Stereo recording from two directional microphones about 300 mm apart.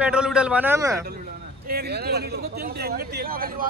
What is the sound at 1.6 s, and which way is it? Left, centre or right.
A man's voice, right.